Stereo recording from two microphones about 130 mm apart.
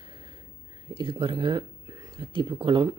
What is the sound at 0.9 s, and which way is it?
Speech, 40° right (ahead or behind).